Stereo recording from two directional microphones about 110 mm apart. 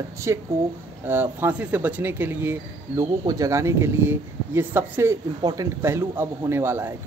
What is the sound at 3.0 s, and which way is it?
Speech, 30° right (ahead or behind).